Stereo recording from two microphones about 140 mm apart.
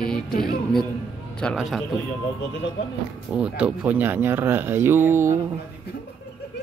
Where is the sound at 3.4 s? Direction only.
10° right (ahead or behind).